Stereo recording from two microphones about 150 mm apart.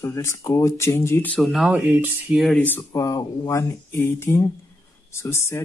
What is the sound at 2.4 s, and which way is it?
Speech, centre (ahead or behind).